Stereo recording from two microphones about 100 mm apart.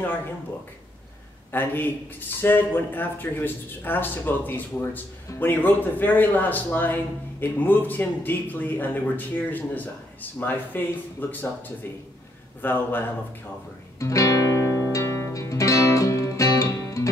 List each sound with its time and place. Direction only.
1.5 s speech: 20° left (ahead or behind)
12.6 s speech: 20° left (ahead or behind)
13.9 s music: 35° left (ahead or behind)